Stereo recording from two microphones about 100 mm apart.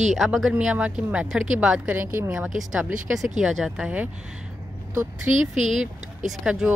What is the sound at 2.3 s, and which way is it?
A woman's voice, 5° right (ahead or behind).